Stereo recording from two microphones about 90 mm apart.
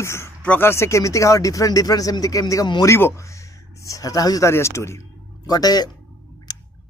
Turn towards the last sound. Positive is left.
turn(degrees=50)  # may be behind; listen again after turning